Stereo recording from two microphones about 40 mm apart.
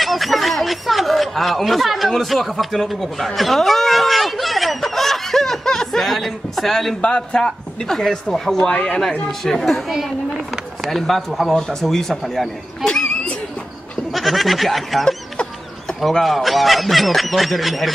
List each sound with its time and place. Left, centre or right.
0.0 s speech: centre
3.3 s snicker: centre
7.0 s speech: left
9.4 s speech: centre
12.8 s a sound: left
14.1 s speech: centre